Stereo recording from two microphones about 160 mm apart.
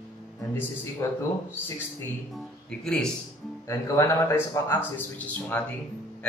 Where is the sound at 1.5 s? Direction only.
15° left (ahead or behind).